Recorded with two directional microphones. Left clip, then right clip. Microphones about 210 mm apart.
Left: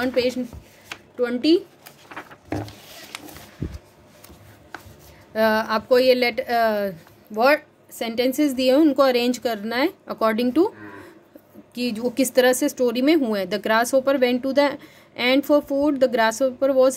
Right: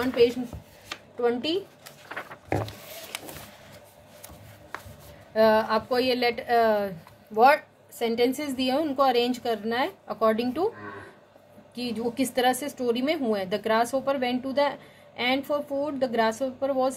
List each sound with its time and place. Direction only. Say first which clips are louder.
0.0 s a woman's voice: even; 50° left (ahead or behind)
5.3 s a woman's voice: left 1 dB; 50° left (ahead or behind)
11.7 s a woman's voice: left 5 dB; 50° left (ahead or behind)